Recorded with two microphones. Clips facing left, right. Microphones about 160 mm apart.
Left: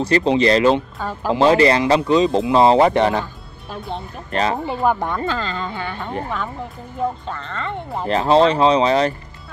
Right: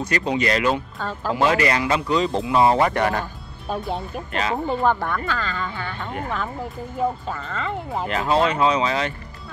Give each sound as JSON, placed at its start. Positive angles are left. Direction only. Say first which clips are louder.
{"t": 0.0, "sound": "speech", "louder": "left 7 dB", "side_deg": 30}
{"t": 0.9, "sound": "speech", "louder": "left 3 dB", "side_deg": 10}
{"t": 1.3, "sound": "speech", "louder": "left 6 dB", "side_deg": 25}
{"t": 4.3, "sound": "speech", "louder": "left 5 dB", "side_deg": 35}
{"t": 5.0, "sound": "speech", "louder": "left 3 dB", "side_deg": 25}
{"t": 7.0, "sound": "speech", "louder": "left 1 dB", "side_deg": -5}
{"t": 8.1, "sound": "speech", "louder": "left 6 dB", "side_deg": 30}